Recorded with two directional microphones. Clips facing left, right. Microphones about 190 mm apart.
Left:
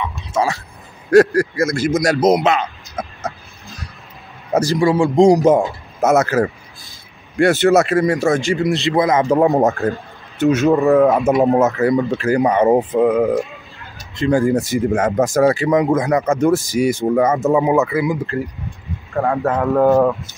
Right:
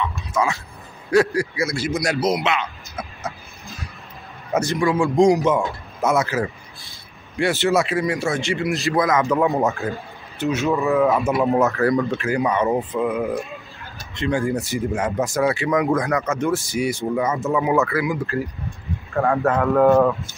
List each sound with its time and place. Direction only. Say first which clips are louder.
0.3 s speech: left 4 dB; 35° left (ahead or behind)
1.1 s speech: left 6 dB; 45° left (ahead or behind)
4.5 s speech: left 5 dB; 35° left (ahead or behind)
8.8 s speech: left 3 dB; 25° left (ahead or behind); by 11.3 s 40° left (ahead or behind)
11.5 s speech: left 3 dB; 20° left (ahead or behind); by 15.7 s 40° left (ahead or behind)
15.7 s speech: left 4 dB; 25° left (ahead or behind)
16.3 s speech: left 6 dB; 40° left (ahead or behind)
17.6 s speech: left 4 dB; 20° left (ahead or behind)
19.2 s a man's voice: left 1 dB; centre (ahead or behind)